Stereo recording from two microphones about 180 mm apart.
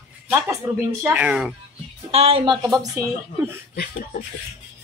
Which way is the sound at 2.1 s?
35° right (ahead or behind).